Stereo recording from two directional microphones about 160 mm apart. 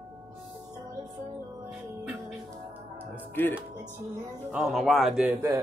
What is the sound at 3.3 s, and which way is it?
Speech, 15° left (ahead or behind).